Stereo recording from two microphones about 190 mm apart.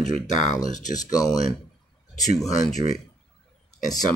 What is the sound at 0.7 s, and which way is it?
Speech, 40° left (ahead or behind).